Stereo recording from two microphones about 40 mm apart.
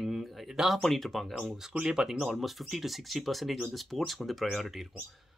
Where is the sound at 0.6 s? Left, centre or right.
Centre.